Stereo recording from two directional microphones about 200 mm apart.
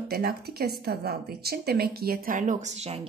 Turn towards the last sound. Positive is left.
turn(degrees=-30)  # may be behind; listen again after turning